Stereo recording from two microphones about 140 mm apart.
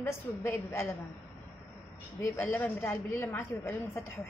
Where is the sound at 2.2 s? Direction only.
15° left (ahead or behind).